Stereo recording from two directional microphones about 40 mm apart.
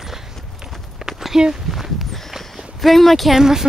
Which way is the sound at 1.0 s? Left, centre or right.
Centre.